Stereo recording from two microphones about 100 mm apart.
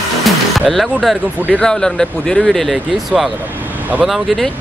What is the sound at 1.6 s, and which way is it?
Speech, 5° left (ahead or behind).